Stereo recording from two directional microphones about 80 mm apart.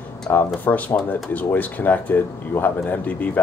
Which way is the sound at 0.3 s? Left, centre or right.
Left.